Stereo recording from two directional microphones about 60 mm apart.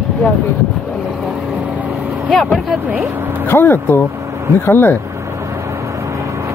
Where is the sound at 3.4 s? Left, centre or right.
Left.